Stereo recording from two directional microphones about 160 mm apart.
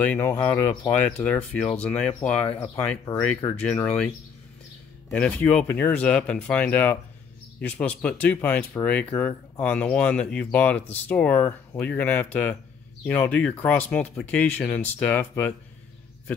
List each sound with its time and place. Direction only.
0.0 s speech: 10° left (ahead or behind)
3.1 s speech: 20° left (ahead or behind)
5.1 s speech: 5° left (ahead or behind)